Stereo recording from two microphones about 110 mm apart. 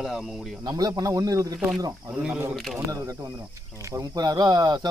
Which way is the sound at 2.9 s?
30° right (ahead or behind).